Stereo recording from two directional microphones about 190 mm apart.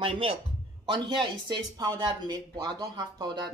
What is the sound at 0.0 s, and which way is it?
Speech, 30° right (ahead or behind).